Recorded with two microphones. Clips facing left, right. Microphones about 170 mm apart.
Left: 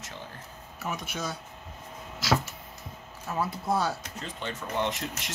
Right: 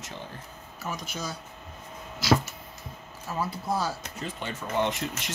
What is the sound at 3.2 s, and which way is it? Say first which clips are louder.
Speech: left 1 dB; centre (ahead or behind).